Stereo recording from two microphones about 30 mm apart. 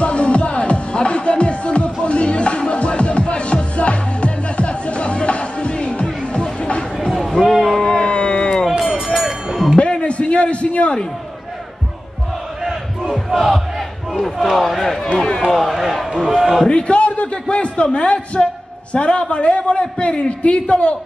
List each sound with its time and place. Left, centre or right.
0.0 s music: left
7.1 s a sound: centre
7.4 s a sound: centre
7.8 s music: left
8.6 s music: centre
9.8 s a sound: left
13.1 s battle cry: centre
13.5 s battle cry: centre
14.6 s speech: centre
15.1 s a man's voice: left
15.5 s speech: centre
16.6 s a sound: left
17.3 s a man's voice: left